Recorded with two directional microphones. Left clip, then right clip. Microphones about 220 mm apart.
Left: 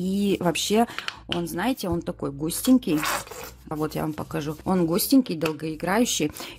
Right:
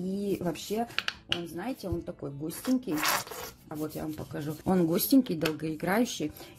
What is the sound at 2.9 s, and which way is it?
Speech, 5° left (ahead or behind).